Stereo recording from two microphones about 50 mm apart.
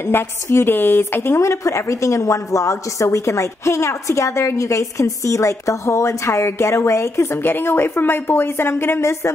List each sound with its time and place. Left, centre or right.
0.0 s a woman's voice: left
1.4 s a woman's voice: left